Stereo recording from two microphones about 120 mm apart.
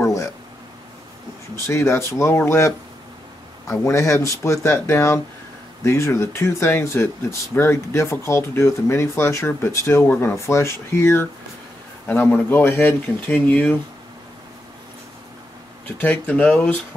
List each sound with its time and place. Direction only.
0.0 s a sound: 25° left (ahead or behind)
1.7 s speech: 20° left (ahead or behind)
16.0 s speech: 15° left (ahead or behind)